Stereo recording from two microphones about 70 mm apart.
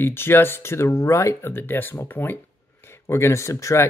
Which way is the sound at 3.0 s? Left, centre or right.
Left.